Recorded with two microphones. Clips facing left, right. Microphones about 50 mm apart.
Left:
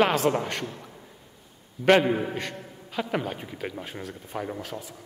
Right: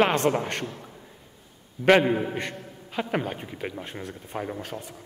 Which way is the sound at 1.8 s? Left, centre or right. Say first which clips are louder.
Right 1 dB; centre.